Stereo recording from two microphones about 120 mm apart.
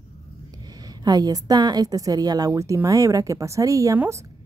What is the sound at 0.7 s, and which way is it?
A woman's voice, 35° right (ahead or behind).